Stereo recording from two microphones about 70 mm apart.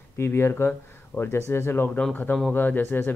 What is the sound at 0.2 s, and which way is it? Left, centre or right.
Speech, left.